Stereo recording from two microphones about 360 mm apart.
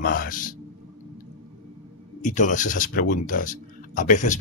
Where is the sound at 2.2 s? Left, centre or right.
Left.